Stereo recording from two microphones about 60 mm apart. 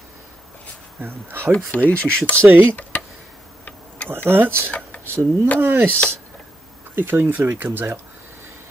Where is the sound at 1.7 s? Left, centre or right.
Left.